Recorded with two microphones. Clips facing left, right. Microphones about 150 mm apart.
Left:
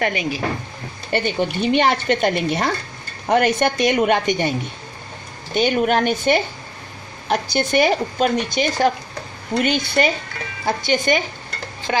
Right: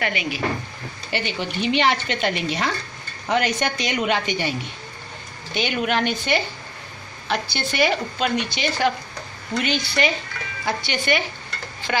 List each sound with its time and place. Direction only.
0.0 s speech: 40° left (ahead or behind)